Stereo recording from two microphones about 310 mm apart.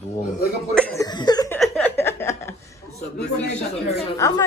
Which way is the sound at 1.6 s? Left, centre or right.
Centre.